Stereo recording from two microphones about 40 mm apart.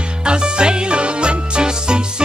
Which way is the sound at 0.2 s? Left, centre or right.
Right.